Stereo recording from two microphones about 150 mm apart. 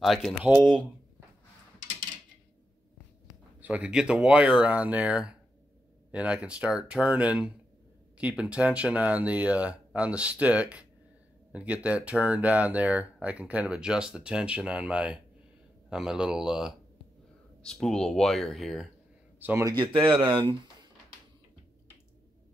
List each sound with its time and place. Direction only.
0.0 s speech: centre (ahead or behind)
3.6 s speech: 10° right (ahead or behind)
19.4 s speech: 20° right (ahead or behind)
19.8 s speech: 35° right (ahead or behind)